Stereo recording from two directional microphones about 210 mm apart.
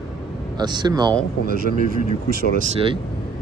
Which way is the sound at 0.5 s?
20° right (ahead or behind).